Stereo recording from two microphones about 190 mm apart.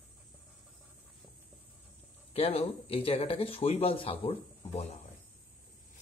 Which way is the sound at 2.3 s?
30° left (ahead or behind).